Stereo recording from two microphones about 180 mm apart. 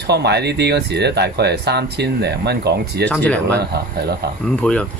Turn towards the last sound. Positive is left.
turn(degrees=5)  # may be behind; listen again after turning